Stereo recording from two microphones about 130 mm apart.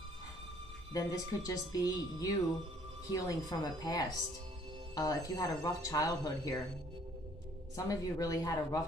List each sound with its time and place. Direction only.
0.9 s speech: 30° left (ahead or behind)
7.7 s speech: 25° left (ahead or behind)